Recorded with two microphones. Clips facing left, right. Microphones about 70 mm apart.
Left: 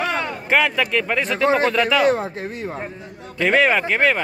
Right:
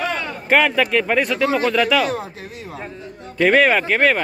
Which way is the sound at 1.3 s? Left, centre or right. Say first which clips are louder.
Left 1 dB; left.